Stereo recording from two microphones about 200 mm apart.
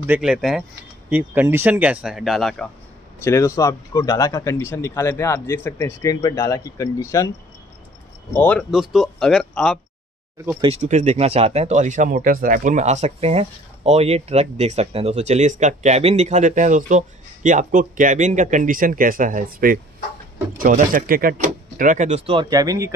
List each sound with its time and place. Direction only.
0.0 s speech: 5° right (ahead or behind)
3.3 s speech: 15° left (ahead or behind)
8.4 s speech: 5° left (ahead or behind)
10.6 s speech: 35° right (ahead or behind); by 22.9 s 15° right (ahead or behind)